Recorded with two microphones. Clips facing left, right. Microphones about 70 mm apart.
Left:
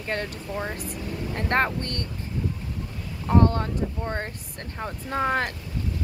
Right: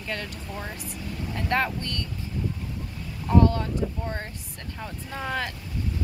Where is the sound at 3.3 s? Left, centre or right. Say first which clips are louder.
Even; left.